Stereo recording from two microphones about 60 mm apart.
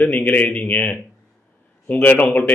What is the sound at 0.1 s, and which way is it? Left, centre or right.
Speech, left.